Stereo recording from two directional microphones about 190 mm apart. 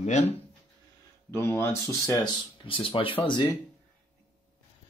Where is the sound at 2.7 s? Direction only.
30° left (ahead or behind).